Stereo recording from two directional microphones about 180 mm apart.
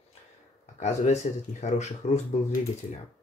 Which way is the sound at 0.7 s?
40° left (ahead or behind).